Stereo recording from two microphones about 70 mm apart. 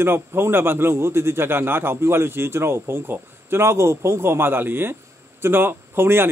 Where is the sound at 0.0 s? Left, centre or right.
Right.